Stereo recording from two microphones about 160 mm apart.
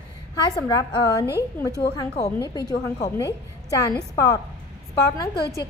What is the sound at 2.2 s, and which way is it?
A woman's voice, 25° left (ahead or behind).